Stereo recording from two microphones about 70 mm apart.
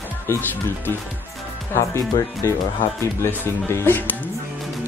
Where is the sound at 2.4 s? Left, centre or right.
Left.